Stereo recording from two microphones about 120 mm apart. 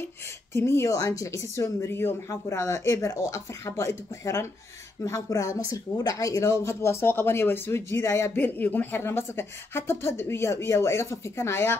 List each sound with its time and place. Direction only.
0.5 s speech: 20° left (ahead or behind)